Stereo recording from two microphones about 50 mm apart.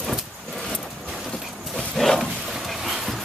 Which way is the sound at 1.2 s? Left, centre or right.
Centre.